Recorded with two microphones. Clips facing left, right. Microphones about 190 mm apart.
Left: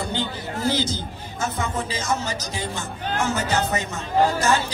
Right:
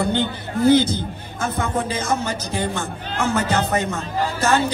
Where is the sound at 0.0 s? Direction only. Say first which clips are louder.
Right 6 dB; 55° right (ahead or behind).